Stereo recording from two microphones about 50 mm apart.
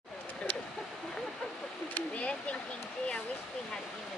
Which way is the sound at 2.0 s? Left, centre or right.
Left.